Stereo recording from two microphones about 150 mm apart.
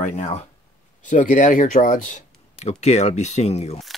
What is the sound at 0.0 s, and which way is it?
Speech, 55° left (ahead or behind).